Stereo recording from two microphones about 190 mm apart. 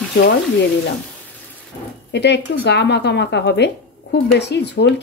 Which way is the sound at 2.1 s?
65° left (ahead or behind).